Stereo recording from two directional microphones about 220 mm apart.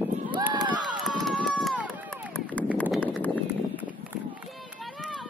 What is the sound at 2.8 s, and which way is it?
Clip-clop, 5° left (ahead or behind).